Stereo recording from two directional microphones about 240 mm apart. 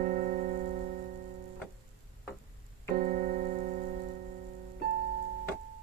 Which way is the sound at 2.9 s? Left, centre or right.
Right.